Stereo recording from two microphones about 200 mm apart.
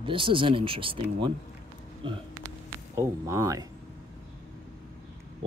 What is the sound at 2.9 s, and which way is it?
Speech, 15° right (ahead or behind).